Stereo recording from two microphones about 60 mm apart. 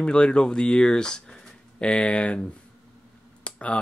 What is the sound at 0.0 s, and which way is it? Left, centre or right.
Speech, centre.